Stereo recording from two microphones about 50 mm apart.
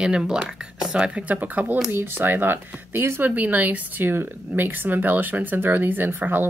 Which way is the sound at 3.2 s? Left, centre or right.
Right.